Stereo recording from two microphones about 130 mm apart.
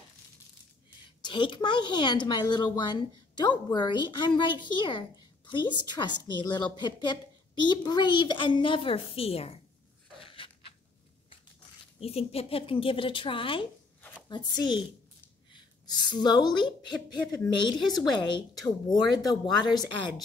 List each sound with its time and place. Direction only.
1.2 s a woman's voice: 40° left (ahead or behind)
10.1 s a sound: 40° left (ahead or behind)
12.0 s a woman's voice: 50° left (ahead or behind); by 20.2 s 35° left (ahead or behind)